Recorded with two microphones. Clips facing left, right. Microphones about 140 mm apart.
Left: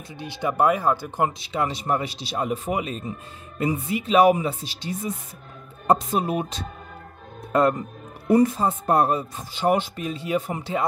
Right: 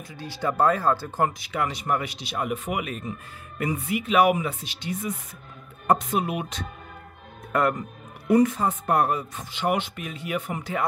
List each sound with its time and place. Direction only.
0.2 s speech: 20° left (ahead or behind)